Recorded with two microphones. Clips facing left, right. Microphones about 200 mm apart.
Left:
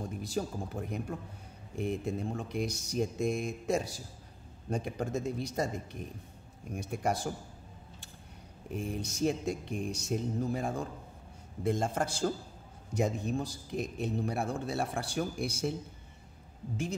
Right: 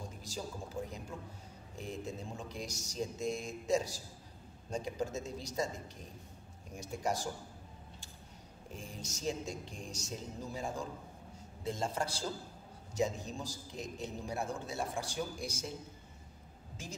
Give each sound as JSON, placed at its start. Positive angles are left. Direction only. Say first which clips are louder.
{"t": 0.2, "sound": "a man's voice", "louder": "left 8 dB", "side_deg": 60}
{"t": 8.7, "sound": "a man's voice", "louder": "left 11 dB", "side_deg": 60}